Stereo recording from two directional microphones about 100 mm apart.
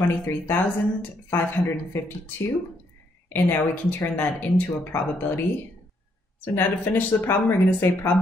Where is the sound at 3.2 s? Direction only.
20° left (ahead or behind).